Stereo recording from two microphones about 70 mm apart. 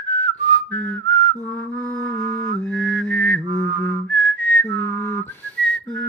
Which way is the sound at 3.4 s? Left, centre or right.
Left.